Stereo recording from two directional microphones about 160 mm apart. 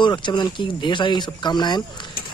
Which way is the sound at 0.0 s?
30° left (ahead or behind).